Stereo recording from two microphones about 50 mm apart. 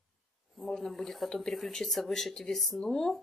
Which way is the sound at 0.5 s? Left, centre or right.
Centre.